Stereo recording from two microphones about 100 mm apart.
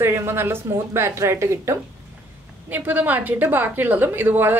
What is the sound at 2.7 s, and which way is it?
A woman's voice, 15° right (ahead or behind).